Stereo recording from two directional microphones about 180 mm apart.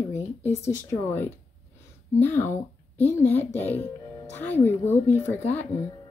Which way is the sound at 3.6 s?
10° left (ahead or behind).